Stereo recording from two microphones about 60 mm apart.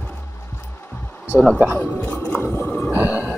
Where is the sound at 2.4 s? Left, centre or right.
Left.